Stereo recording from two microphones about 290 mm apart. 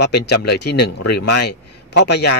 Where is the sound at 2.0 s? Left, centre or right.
Left.